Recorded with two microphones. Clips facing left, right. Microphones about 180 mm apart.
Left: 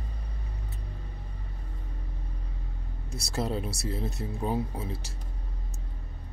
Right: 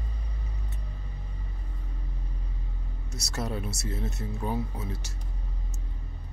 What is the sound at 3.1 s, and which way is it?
Speech, 30° left (ahead or behind).